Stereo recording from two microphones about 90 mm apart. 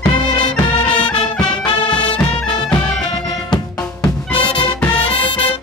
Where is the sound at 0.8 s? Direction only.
65° left (ahead or behind).